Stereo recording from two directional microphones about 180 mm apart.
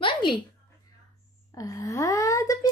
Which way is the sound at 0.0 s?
30° left (ahead or behind).